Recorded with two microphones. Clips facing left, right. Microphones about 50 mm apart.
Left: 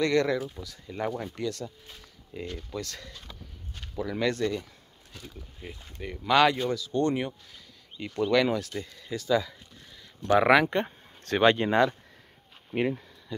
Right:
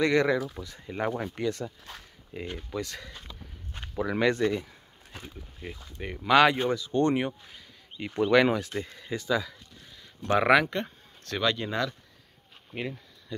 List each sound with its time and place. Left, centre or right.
0.0 s speech: centre
0.6 s speech: right
1.9 s speech: right
2.3 s speech: centre
3.7 s speech: right
5.1 s speech: right
5.6 s speech: centre
5.9 s speech: centre
6.5 s speech: right
10.4 s speech: centre
10.7 s speech: left
13.3 s speech: centre